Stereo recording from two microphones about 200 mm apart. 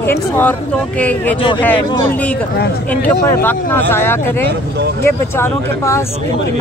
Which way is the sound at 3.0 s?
10° left (ahead or behind).